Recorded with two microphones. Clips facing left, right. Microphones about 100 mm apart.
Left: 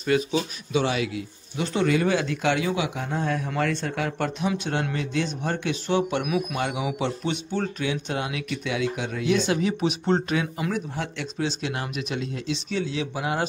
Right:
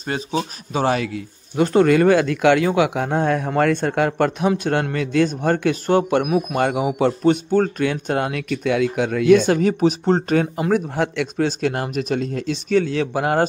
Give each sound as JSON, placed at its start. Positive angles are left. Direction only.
{"t": 0.0, "sound": "speech", "side_deg": -35}